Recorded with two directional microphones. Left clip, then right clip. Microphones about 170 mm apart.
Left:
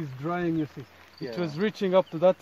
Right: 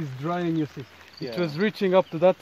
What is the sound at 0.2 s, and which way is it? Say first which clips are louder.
Speech: right 2 dB; 50° right (ahead or behind).